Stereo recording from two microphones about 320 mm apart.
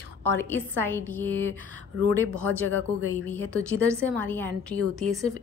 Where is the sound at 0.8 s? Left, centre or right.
Centre.